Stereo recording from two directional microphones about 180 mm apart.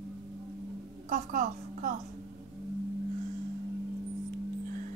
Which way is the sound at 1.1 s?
45° right (ahead or behind).